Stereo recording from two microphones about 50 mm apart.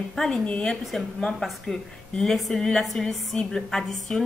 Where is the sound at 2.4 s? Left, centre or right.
Centre.